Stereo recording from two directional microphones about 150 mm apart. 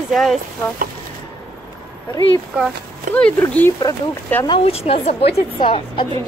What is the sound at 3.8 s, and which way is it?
Speech, 25° left (ahead or behind).